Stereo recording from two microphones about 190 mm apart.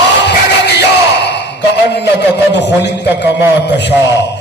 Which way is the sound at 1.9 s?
65° left (ahead or behind).